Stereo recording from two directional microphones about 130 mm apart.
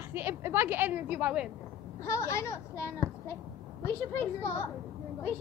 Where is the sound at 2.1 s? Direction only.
20° left (ahead or behind).